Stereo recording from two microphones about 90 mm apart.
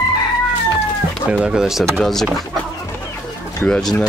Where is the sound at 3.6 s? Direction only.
5° left (ahead or behind).